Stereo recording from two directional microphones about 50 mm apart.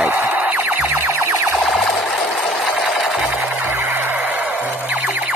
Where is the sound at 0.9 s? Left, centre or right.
Right.